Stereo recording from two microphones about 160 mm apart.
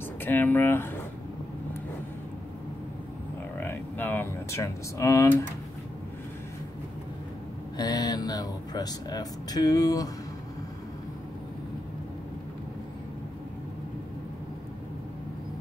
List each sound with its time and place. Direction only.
0.2 s speech: 10° left (ahead or behind)
3.5 s a sound: 10° left (ahead or behind)
7.7 s speech: 25° left (ahead or behind)